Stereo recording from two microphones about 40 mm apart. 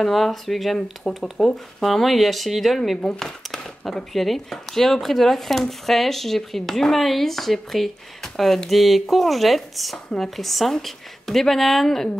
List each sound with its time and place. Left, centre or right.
0.0 s speech: centre
1.0 s speech: centre
3.0 s speech: centre
3.8 s speech: centre